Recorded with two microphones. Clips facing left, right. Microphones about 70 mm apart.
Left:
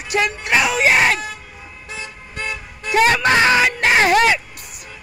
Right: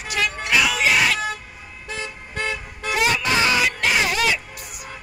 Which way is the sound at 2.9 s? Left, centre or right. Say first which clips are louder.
Left 6 dB; left.